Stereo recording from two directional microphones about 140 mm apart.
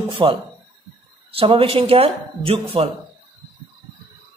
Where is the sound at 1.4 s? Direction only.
40° right (ahead or behind).